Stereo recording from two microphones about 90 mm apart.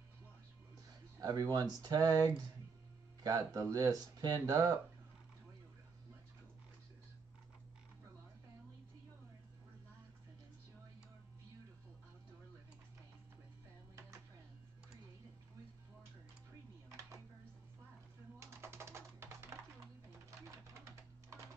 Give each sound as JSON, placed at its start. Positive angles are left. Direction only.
{"t": 1.2, "sound": "speech", "side_deg": -50}
{"t": 3.3, "sound": "speech", "side_deg": -40}
{"t": 18.4, "sound": "typing", "side_deg": -30}